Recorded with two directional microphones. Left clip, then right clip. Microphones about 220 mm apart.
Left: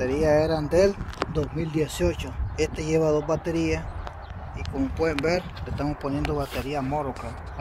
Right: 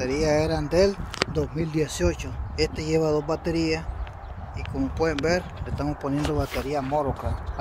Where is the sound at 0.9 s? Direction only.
40° right (ahead or behind).